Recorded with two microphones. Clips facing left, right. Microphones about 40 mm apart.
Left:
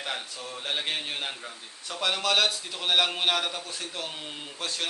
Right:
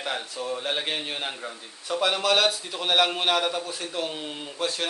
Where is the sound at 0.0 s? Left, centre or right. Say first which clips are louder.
Right 4 dB; centre.